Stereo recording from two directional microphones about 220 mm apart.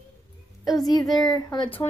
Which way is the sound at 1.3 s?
20° left (ahead or behind).